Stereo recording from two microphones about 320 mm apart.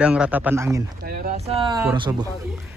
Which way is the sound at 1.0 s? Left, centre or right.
Right.